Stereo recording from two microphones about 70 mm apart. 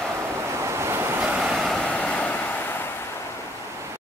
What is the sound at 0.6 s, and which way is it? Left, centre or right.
Waves, right.